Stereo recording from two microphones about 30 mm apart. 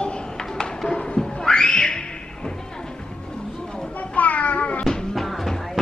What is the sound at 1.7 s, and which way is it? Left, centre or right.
Music, left.